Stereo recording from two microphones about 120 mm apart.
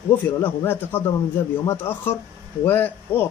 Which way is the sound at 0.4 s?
20° left (ahead or behind).